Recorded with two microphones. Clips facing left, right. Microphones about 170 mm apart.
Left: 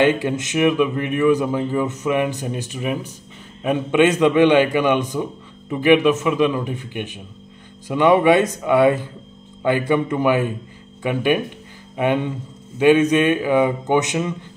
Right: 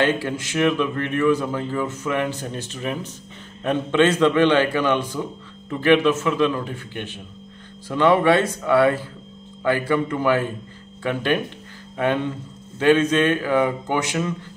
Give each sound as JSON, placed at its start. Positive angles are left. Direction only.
{"t": 0.0, "sound": "a man's voice", "side_deg": 20}